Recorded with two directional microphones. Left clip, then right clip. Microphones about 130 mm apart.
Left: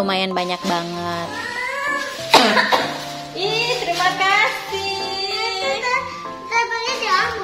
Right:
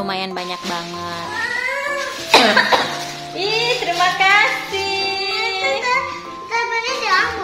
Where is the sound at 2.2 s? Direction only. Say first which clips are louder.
Right 1 dB; 90° left.